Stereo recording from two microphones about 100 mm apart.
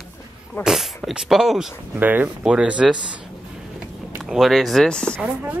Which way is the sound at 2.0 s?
15° right (ahead or behind).